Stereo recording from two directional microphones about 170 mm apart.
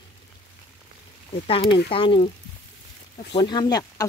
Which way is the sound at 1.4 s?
35° left (ahead or behind).